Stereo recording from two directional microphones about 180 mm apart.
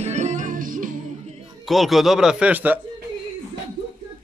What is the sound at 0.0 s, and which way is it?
Music, 40° right (ahead or behind).